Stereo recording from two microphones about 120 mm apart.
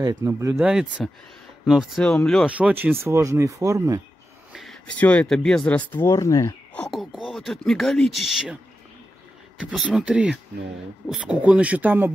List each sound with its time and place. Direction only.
0.0 s speech: 30° right (ahead or behind)
0.6 s speech: 5° right (ahead or behind)
2.4 s speech: 10° right (ahead or behind); by 4.0 s 25° right (ahead or behind)
4.5 s a sound: centre (ahead or behind)
4.9 s speech: 15° left (ahead or behind)
6.0 s speech: 25° left (ahead or behind)
6.7 s a sound: 5° left (ahead or behind)
7.3 s speech: 5° left (ahead or behind)
9.6 s speech: 5° right (ahead or behind)